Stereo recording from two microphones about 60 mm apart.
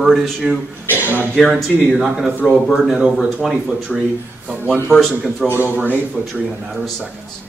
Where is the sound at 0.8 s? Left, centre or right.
Right.